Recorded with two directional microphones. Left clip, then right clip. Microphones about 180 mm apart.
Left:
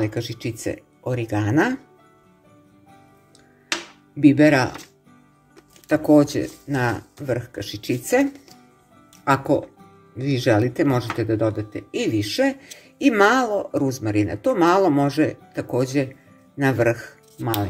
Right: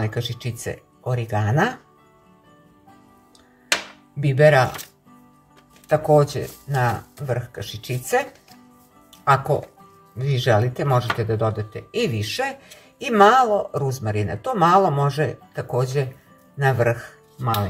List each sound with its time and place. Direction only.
0.0 s speech: 45° left (ahead or behind)
4.2 s speech: 45° left (ahead or behind)
5.9 s speech: 50° left (ahead or behind)
10.2 s speech: 45° left (ahead or behind)